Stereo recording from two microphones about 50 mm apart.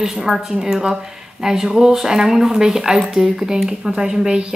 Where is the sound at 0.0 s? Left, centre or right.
Centre.